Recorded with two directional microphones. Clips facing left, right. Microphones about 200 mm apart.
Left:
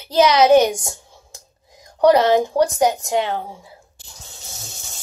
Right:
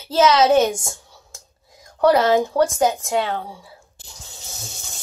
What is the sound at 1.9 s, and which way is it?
A child's voice, 15° left (ahead or behind).